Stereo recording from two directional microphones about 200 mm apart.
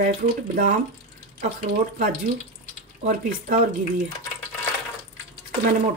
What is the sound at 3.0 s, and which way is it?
Speech, 40° right (ahead or behind).